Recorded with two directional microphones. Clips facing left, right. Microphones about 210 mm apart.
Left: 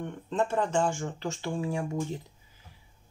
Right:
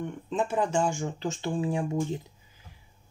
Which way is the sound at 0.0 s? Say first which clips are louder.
Even; 5° right (ahead or behind).